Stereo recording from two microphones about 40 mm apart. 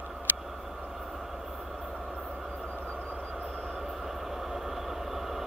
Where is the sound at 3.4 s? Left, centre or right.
Centre.